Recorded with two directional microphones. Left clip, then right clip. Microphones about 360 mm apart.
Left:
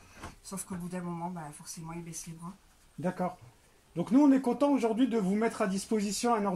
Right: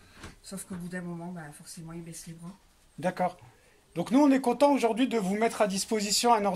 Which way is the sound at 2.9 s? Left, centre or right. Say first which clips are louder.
Right 5 dB; right.